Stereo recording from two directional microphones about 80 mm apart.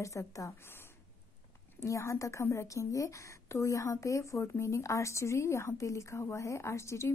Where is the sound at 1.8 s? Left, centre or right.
Left.